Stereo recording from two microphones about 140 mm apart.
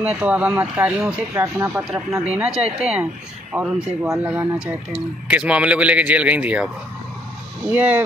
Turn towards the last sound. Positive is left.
turn(degrees=-10)  # may be behind; listen again after turning